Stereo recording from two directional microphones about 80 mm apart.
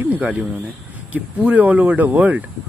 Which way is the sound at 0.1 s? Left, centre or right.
Centre.